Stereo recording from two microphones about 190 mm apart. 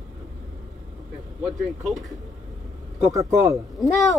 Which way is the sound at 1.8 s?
Centre (ahead or behind).